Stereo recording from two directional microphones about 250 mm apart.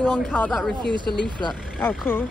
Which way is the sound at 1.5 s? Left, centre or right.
Centre.